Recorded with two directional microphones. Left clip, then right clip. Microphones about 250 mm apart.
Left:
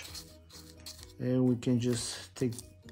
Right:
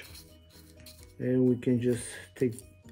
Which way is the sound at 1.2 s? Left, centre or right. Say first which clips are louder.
Right 4 dB; centre.